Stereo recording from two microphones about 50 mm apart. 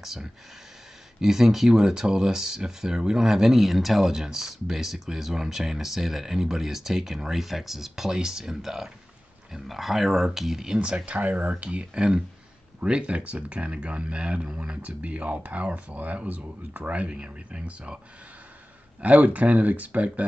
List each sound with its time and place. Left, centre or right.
0.0 s speech: centre
10.8 s speech: right
11.6 s speech: right
19.0 s speech: right